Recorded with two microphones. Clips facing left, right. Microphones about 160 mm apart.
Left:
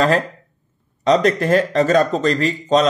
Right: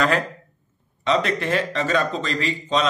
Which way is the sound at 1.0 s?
40° left (ahead or behind).